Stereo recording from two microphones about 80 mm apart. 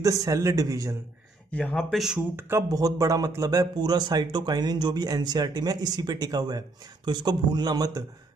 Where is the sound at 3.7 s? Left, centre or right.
Right.